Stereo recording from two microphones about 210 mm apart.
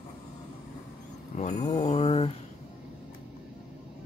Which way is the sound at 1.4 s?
35° left (ahead or behind).